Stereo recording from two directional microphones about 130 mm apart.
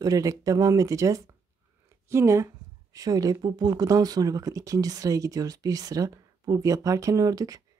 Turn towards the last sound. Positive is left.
turn(degrees=-30)  # may be behind; listen again after turning